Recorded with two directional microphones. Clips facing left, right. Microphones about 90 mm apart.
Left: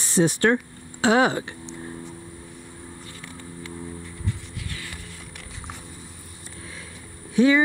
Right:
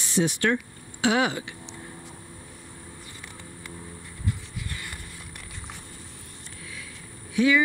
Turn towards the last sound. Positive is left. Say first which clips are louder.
# left 4 dB
turn(degrees=35)  # may be behind; listen again after turning